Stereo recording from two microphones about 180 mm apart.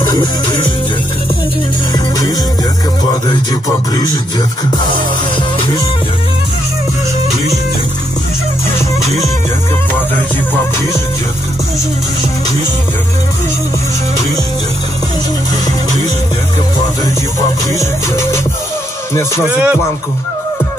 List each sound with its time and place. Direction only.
17.7 s music: 15° left (ahead or behind)
19.5 s music: 10° right (ahead or behind)